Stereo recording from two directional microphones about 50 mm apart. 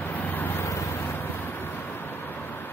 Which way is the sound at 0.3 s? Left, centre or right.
Left.